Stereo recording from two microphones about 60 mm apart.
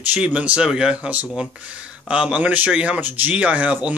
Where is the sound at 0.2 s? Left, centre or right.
Centre.